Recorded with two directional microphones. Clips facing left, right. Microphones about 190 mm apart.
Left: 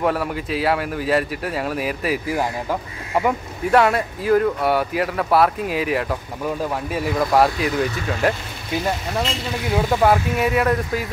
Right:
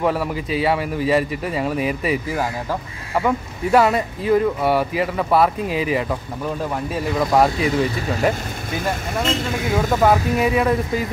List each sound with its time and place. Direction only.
0.0 s speech: centre (ahead or behind)
3.7 s speech: centre (ahead or behind)
9.2 s speech: 50° right (ahead or behind)
10.0 s speech: 5° left (ahead or behind)